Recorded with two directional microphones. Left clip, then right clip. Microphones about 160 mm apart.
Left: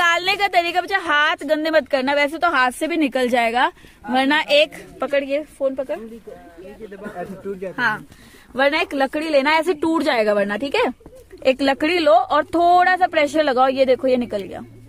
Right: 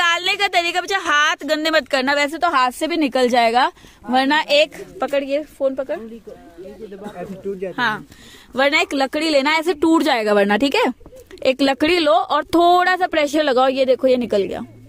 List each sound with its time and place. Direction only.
0.0 s a woman's voice: 10° right (ahead or behind); by 6.0 s 25° right (ahead or behind)
7.6 s speech: 35° right (ahead or behind); by 11.0 s 75° right (ahead or behind)
11.3 s speech: 50° right (ahead or behind)